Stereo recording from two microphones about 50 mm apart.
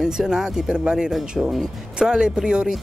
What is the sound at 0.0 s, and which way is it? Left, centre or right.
Speech, centre.